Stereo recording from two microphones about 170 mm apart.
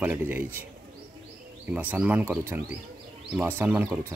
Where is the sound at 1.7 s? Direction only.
10° right (ahead or behind).